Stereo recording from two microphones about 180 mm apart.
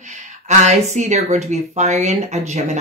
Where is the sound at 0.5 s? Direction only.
40° right (ahead or behind).